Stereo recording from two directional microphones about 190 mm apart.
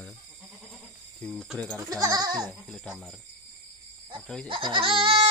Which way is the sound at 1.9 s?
20° right (ahead or behind).